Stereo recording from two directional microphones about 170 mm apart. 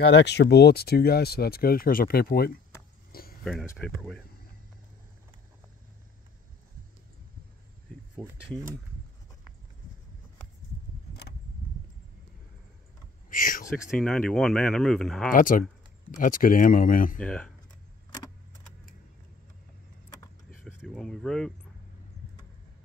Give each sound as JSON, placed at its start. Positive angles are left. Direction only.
{"t": 0.0, "sound": "speech", "side_deg": 90}
{"t": 3.1, "sound": "a sound", "side_deg": 60}
{"t": 3.9, "sound": "speech", "side_deg": 5}
{"t": 8.2, "sound": "speech", "side_deg": 0}
{"t": 13.3, "sound": "speech", "side_deg": 55}
{"t": 13.9, "sound": "speech", "side_deg": 5}
{"t": 15.3, "sound": "speech", "side_deg": 50}
{"t": 17.2, "sound": "speech", "side_deg": 5}
{"t": 20.6, "sound": "a sound", "side_deg": 5}